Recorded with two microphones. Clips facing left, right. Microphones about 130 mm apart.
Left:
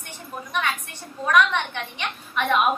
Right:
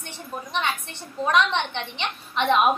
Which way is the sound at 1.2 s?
25° right (ahead or behind).